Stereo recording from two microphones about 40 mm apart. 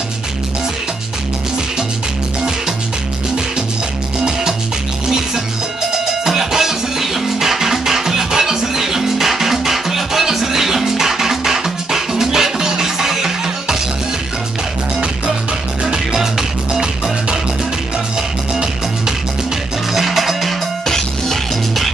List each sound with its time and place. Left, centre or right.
5.0 s music: centre
15.8 s music: centre
16.2 s music: centre
18.5 s music: centre
19.9 s music: centre
20.8 s music: centre